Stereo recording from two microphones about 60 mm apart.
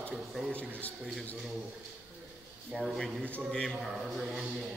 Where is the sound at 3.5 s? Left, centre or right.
Centre.